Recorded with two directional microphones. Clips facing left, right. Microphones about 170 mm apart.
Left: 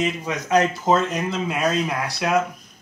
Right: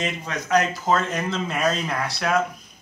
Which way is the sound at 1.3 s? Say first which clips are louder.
Even; 10° left (ahead or behind).